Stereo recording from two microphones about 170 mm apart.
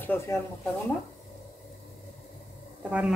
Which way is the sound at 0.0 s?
10° left (ahead or behind).